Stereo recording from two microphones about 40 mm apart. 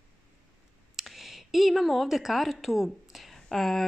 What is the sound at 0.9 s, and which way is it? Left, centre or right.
A woman's voice, centre.